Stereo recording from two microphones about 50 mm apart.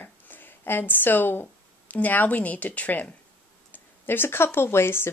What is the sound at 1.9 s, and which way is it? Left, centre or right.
Speech, left.